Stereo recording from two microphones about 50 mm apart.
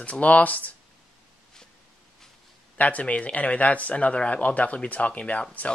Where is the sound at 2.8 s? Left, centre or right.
Left.